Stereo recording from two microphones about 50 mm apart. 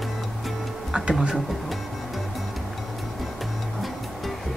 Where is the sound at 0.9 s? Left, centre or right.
Centre.